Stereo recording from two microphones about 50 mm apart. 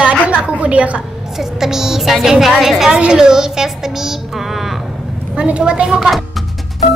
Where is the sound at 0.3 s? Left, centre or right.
Right.